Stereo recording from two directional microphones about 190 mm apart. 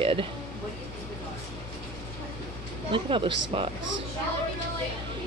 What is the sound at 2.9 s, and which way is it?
Speech, 25° right (ahead or behind).